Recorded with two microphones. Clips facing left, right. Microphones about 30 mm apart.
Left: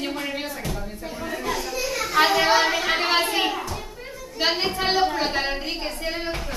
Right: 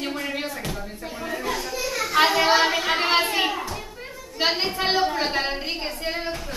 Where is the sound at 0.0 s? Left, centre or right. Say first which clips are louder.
Even; centre.